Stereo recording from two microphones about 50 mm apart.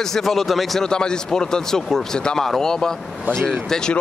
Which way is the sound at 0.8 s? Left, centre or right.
Centre.